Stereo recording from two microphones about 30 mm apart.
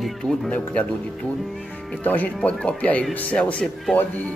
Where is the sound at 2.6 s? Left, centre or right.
Left.